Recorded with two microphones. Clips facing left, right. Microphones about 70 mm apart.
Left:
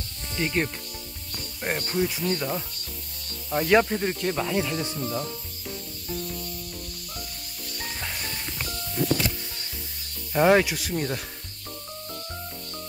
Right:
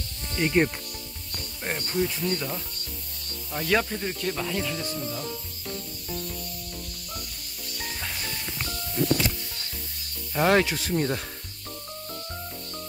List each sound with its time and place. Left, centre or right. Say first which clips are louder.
0.3 s speech: right 4 dB; centre
1.8 s speech: right 1 dB; centre
7.8 s music: even; centre
10.3 s speech: left 2 dB; centre